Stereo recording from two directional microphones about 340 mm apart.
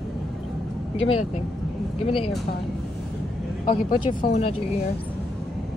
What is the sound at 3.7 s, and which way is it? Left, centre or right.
Speech, left.